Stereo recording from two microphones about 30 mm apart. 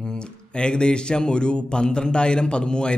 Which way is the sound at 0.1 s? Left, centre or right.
Left.